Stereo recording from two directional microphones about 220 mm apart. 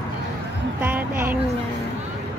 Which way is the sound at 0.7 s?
10° right (ahead or behind).